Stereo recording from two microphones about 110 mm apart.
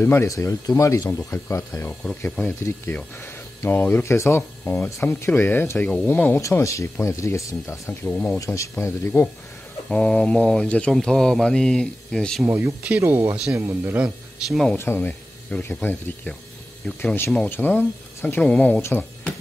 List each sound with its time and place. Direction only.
0.0 s speech: 20° left (ahead or behind)
6.4 s speech: 30° left (ahead or behind)
8.4 s speech: 25° left (ahead or behind)
9.8 s speech: 5° left (ahead or behind)
12.4 s speech: 25° right (ahead or behind)
14.5 s speech: centre (ahead or behind)
14.8 s speech: 20° left (ahead or behind)